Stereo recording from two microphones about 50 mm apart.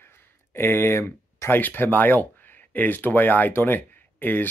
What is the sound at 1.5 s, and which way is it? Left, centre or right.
Speech, left.